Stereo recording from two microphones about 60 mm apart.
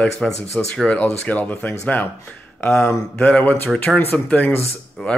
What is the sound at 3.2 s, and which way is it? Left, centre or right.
Speech, left.